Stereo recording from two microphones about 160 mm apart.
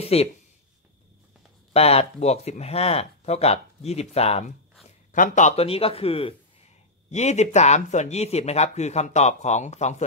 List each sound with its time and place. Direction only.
0.0 s speech: 40° left (ahead or behind)
1.7 s speech: 40° left (ahead or behind)
5.1 s speech: 50° left (ahead or behind)